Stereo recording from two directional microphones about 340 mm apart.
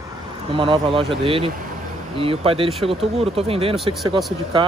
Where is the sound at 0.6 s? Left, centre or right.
Centre.